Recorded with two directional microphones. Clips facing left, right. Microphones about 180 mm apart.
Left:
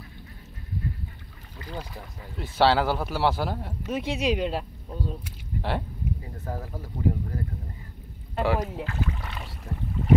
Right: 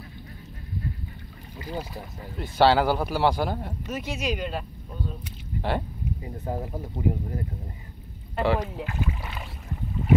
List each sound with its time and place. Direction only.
1.6 s speech: 10° right (ahead or behind)
2.4 s speech: centre (ahead or behind)
4.0 s speech: 30° left (ahead or behind)
5.6 s speech: centre (ahead or behind)
6.2 s speech: 20° right (ahead or behind)
8.4 s speech: 5° left (ahead or behind)
9.2 s boat: 5° right (ahead or behind)